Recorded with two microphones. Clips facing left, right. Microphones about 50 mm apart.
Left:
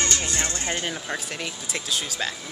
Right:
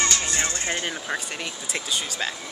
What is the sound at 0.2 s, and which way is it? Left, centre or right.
Music, right.